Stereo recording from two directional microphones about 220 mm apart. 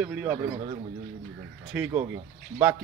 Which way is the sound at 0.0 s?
5° right (ahead or behind).